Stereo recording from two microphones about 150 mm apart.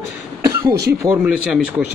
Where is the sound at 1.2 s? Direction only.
5° right (ahead or behind).